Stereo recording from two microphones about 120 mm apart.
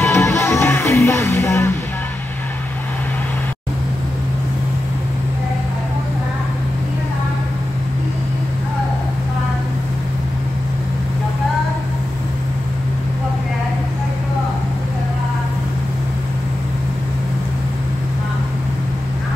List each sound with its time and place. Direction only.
0.0 s music: 20° left (ahead or behind)